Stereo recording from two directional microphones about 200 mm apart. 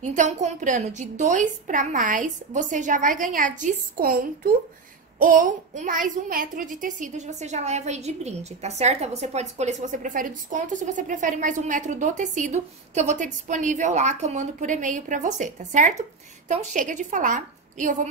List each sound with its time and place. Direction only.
0.0 s a woman's voice: 35° right (ahead or behind)